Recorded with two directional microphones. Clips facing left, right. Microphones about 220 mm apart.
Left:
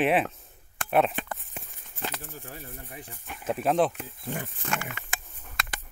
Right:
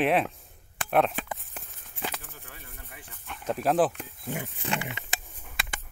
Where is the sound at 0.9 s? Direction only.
Centre (ahead or behind).